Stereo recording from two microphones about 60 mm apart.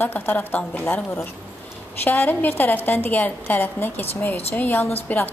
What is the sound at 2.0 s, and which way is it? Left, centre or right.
A woman's voice, left.